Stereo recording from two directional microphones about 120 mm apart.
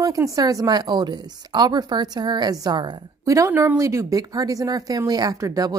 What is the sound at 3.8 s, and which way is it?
Speech, 25° right (ahead or behind).